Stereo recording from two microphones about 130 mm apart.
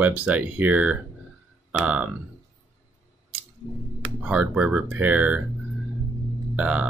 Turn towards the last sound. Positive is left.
turn(degrees=-10)  # may be behind; listen again after turning